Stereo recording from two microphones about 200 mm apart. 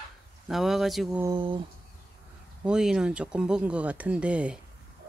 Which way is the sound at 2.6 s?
5° right (ahead or behind).